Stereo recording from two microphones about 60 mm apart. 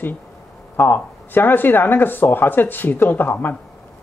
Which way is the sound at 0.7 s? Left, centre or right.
Left.